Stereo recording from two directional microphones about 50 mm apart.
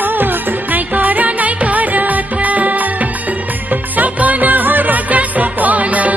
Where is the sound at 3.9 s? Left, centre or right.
Right.